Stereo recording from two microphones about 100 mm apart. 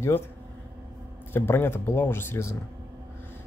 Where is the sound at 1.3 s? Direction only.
25° left (ahead or behind).